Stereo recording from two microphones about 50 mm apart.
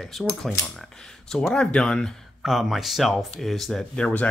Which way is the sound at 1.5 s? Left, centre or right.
Centre.